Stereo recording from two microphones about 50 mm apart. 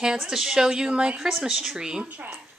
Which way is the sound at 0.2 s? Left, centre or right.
Centre.